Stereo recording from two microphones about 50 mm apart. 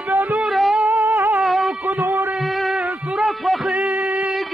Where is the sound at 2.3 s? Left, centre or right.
Centre.